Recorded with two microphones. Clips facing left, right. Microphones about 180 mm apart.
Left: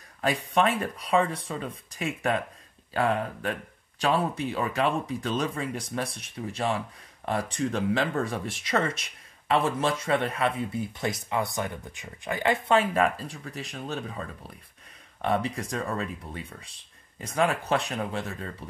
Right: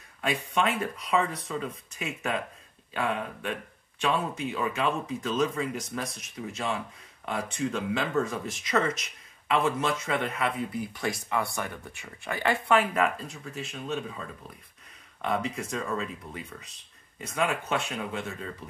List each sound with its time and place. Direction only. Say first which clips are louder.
0.2 s speech: left 3 dB; 35° left (ahead or behind); by 12.5 s 20° left (ahead or behind)
12.6 s speech: left 1 dB; 30° left (ahead or behind)
15.2 s speech: left 2 dB; 30° left (ahead or behind)